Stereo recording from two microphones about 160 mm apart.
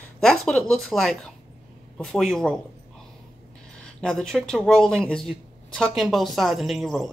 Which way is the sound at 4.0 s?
5° left (ahead or behind).